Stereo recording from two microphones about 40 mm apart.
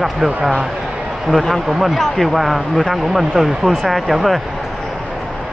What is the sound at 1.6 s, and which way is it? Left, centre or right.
Speech, centre.